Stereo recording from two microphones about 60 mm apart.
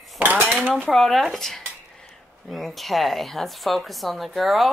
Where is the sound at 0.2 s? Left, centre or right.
Right.